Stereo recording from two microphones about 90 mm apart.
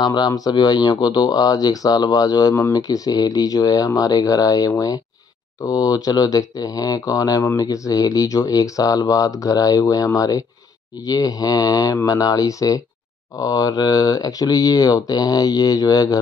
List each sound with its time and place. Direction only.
0.0 s speech: 50° left (ahead or behind)